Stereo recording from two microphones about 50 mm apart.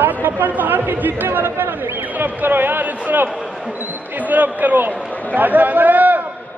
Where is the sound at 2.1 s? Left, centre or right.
Right.